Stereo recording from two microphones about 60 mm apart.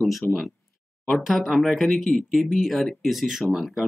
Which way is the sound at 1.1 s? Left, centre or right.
Centre.